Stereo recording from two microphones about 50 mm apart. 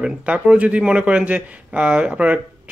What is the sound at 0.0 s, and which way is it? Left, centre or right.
Speech, right.